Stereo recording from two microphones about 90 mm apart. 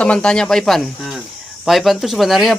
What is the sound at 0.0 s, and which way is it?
Speech, 10° left (ahead or behind).